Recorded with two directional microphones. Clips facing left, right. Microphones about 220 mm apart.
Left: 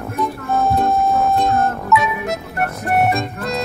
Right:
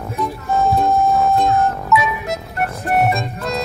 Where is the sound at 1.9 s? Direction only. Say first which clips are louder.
Even; centre (ahead or behind).